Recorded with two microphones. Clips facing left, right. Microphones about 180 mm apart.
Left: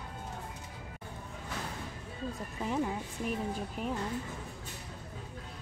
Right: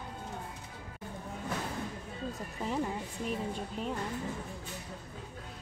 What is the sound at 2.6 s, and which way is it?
Speech, centre (ahead or behind).